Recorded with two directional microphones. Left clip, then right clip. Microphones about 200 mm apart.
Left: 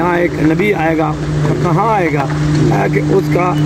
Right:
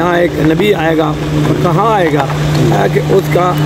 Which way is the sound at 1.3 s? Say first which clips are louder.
Right 4 dB; 50° right (ahead or behind).